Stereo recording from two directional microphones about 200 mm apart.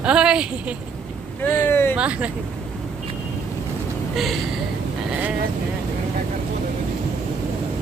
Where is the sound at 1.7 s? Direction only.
10° left (ahead or behind).